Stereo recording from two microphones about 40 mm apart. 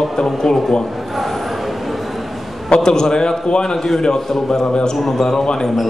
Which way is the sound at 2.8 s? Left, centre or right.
Centre.